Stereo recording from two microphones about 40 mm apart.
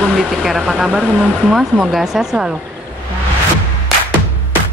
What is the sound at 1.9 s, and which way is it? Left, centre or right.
Speech, centre.